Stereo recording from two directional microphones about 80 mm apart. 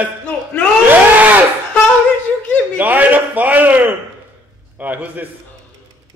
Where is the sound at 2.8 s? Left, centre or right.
Right.